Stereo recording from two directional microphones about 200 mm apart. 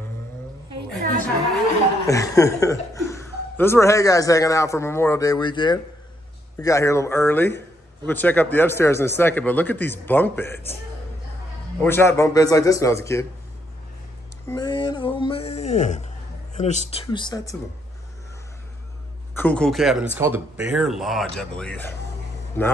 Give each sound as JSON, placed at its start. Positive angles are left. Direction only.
{"t": 2.0, "sound": "a man's voice", "side_deg": 15}
{"t": 11.8, "sound": "a man's voice", "side_deg": 10}
{"t": 14.5, "sound": "speech", "side_deg": 20}
{"t": 19.3, "sound": "speech", "side_deg": 5}